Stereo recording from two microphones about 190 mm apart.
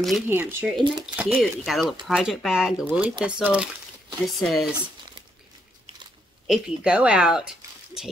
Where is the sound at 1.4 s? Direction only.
Centre (ahead or behind).